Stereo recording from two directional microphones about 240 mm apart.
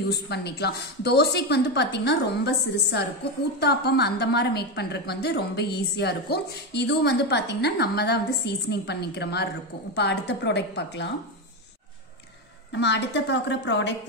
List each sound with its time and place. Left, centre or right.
0.1 s a woman's voice: left
12.7 s a woman's voice: left